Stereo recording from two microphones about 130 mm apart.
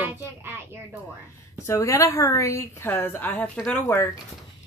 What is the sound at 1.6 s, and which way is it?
Speech, 20° left (ahead or behind).